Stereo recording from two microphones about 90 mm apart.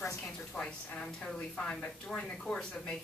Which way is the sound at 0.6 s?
10° left (ahead or behind).